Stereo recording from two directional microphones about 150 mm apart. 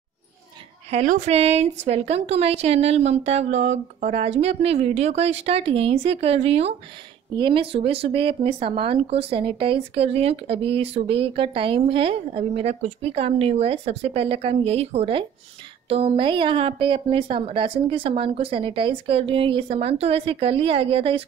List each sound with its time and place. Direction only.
1.0 s speech: 60° right (ahead or behind)
1.3 s speech: 45° right (ahead or behind)